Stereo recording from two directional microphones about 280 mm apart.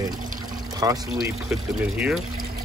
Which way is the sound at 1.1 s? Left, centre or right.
Centre.